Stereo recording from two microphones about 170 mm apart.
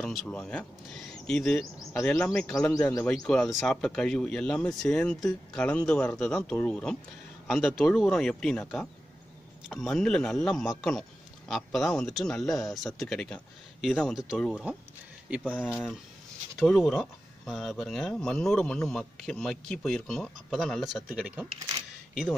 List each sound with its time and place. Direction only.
0.0 s speech: 5° left (ahead or behind)